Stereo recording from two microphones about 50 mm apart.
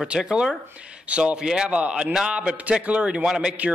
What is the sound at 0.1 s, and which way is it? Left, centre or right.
Speech, centre.